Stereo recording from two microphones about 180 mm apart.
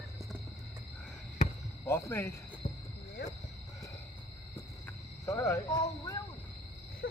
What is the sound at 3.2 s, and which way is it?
Wild animals, 65° left (ahead or behind).